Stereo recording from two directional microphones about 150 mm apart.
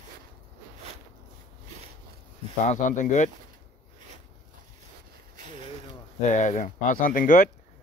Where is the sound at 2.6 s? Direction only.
55° left (ahead or behind).